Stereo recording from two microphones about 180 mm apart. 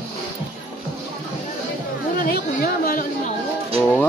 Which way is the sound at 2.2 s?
55° left (ahead or behind).